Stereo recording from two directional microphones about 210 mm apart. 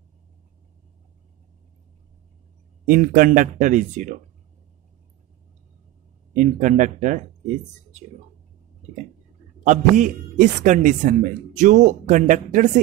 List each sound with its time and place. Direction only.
2.9 s a man's voice: 40° right (ahead or behind)
6.3 s a man's voice: 35° right (ahead or behind)
9.7 s a man's voice: 35° right (ahead or behind)